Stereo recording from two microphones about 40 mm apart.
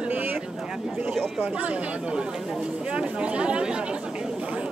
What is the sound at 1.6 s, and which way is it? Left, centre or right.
Speech, right.